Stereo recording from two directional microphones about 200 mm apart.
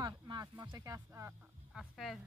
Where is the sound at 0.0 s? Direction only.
20° right (ahead or behind).